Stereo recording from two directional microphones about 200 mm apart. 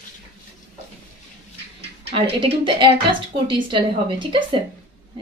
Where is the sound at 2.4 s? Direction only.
25° right (ahead or behind).